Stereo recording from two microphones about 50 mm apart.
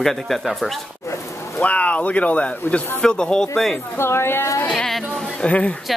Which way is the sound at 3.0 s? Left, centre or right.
Centre.